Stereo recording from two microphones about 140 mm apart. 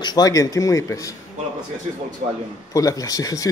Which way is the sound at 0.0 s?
30° left (ahead or behind).